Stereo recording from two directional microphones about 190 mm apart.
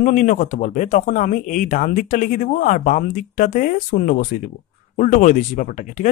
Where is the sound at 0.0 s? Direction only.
40° left (ahead or behind).